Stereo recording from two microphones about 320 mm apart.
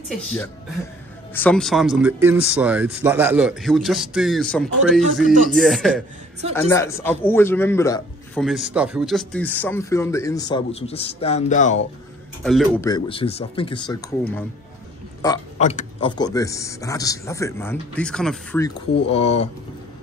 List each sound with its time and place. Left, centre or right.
1.3 s a man's voice: centre; by 11.8 s left
12.4 s a man's voice: centre
15.2 s a man's voice: centre
19.0 s speech: centre